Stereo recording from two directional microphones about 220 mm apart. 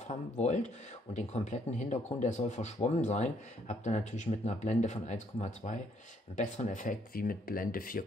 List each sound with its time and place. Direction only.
0.1 s speech: 30° left (ahead or behind)